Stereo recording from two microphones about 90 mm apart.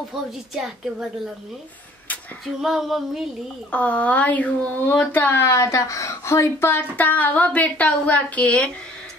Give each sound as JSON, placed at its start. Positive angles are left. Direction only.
{"t": 2.4, "sound": "female singing", "side_deg": -5}
{"t": 3.7, "sound": "speech", "side_deg": 15}